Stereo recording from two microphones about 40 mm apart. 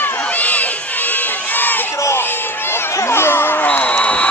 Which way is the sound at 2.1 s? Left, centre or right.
Left.